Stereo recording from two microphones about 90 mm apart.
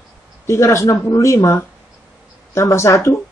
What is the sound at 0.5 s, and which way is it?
A woman's voice, 35° left (ahead or behind).